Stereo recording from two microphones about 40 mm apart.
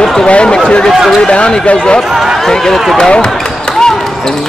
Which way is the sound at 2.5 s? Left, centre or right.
Centre.